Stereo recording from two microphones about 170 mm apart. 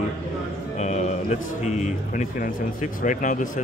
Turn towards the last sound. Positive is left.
turn(degrees=50)  # may be behind; listen again after turning